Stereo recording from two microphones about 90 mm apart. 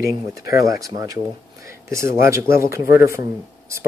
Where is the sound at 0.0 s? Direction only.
40° right (ahead or behind).